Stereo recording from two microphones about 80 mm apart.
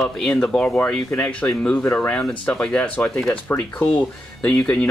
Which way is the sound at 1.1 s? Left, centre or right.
Centre.